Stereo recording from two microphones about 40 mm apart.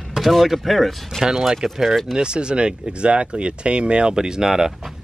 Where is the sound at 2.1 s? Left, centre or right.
Right.